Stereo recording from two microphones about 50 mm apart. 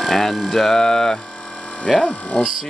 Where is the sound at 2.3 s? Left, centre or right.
Centre.